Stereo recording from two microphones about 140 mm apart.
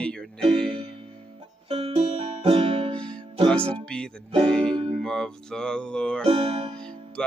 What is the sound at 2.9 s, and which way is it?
Music, 5° left (ahead or behind).